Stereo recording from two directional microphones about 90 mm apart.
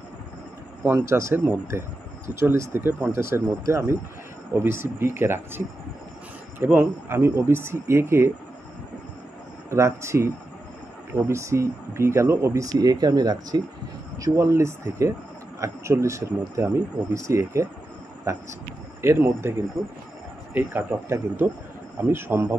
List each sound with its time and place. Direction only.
0.8 s speech: 30° right (ahead or behind)
6.6 s speech: 25° right (ahead or behind)
9.7 s speech: 30° right (ahead or behind); by 13.6 s 45° right (ahead or behind)
14.1 s speech: 35° right (ahead or behind)
18.9 s speech: 30° right (ahead or behind)
20.5 s speech: 25° right (ahead or behind)